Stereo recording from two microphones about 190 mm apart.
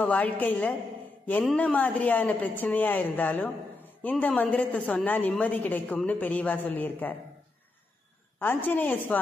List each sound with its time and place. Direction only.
0.0 s a woman's voice: 10° left (ahead or behind)
8.4 s a woman's voice: 10° left (ahead or behind)